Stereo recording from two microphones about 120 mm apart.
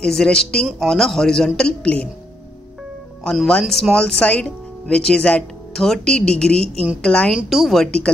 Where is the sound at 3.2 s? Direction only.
5° left (ahead or behind).